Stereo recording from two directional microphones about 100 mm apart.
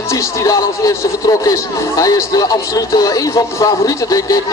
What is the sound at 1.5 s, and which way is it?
Speech, 35° left (ahead or behind).